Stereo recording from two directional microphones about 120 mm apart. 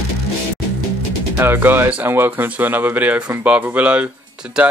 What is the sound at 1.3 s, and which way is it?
Speech, 15° right (ahead or behind).